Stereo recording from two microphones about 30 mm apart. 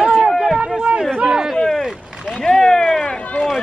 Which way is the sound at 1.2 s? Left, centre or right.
Right.